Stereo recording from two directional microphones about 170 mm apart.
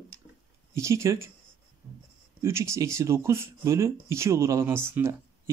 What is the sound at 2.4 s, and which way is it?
Speech, 15° right (ahead or behind).